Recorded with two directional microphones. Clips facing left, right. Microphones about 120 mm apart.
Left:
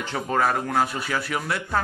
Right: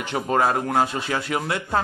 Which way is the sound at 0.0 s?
20° right (ahead or behind).